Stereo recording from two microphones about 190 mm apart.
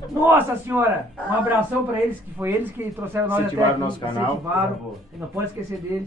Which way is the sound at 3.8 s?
25° left (ahead or behind).